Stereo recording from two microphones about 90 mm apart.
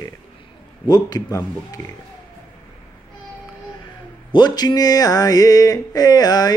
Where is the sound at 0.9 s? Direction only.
50° left (ahead or behind).